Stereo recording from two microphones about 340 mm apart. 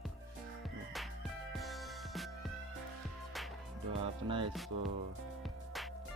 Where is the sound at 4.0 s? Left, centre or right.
Centre.